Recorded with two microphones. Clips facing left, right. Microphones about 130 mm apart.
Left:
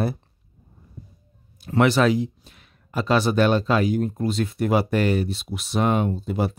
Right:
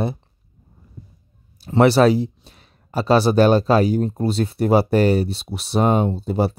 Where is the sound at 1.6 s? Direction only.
35° right (ahead or behind).